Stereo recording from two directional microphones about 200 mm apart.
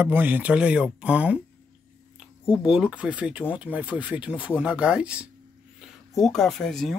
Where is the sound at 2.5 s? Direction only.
5° right (ahead or behind).